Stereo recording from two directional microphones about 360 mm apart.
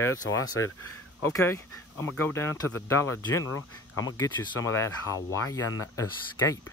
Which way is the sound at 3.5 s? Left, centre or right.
Left.